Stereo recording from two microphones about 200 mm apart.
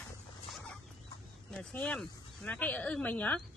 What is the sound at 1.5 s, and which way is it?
Speech, 5° left (ahead or behind).